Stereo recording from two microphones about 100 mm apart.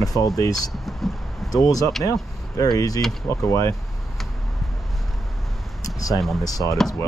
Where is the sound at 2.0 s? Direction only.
35° left (ahead or behind).